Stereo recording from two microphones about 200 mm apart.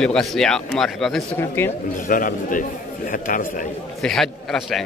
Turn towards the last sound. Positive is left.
turn(degrees=0)  # may be behind; listen again after turning